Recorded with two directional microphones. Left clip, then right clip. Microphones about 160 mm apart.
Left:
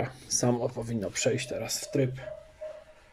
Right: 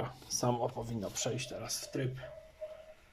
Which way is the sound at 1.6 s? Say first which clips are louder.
Left 9 dB; 25° left (ahead or behind).